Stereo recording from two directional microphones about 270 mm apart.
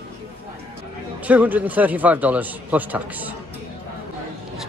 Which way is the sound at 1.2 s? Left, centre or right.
Centre.